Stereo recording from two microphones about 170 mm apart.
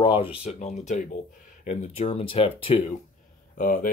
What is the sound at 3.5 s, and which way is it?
Speech, 55° left (ahead or behind).